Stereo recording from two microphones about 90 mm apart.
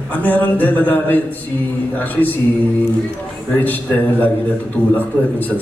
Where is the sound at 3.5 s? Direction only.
20° left (ahead or behind).